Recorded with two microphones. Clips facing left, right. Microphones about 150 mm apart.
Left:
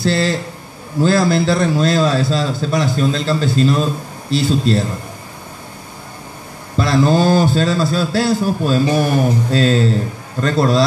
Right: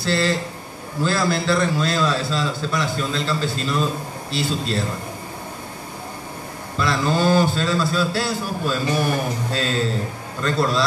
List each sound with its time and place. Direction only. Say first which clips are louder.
0.0 s a man's voice: left 4 dB; 40° left (ahead or behind)
6.8 s a man's voice: left 6 dB; 40° left (ahead or behind)